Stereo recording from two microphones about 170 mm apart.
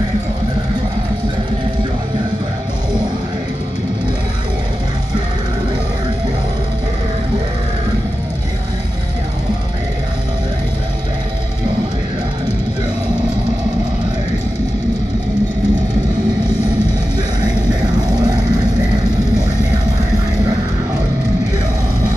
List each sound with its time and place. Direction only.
18.0 s music: 25° right (ahead or behind)